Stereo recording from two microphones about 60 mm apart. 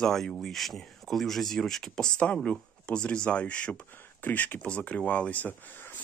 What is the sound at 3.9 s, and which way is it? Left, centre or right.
Speech, left.